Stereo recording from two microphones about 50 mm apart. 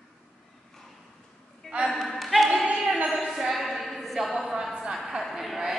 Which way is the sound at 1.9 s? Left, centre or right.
Centre.